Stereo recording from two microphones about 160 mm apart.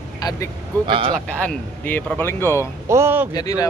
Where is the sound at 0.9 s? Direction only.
35° right (ahead or behind).